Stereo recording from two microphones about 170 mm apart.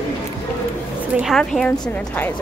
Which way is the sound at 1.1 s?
Centre (ahead or behind).